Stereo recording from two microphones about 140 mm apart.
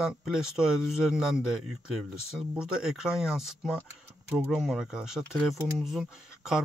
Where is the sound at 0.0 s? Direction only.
Centre (ahead or behind).